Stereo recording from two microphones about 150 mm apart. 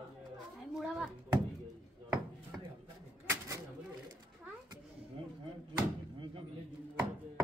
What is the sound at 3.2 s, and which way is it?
Bird, 20° right (ahead or behind).